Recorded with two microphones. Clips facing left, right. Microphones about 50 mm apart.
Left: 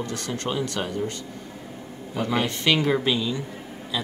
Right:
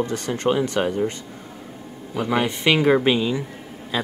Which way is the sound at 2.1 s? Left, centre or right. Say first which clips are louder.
Right 3 dB; centre.